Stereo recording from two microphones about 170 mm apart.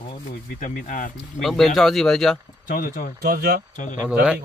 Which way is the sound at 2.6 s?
55° left (ahead or behind).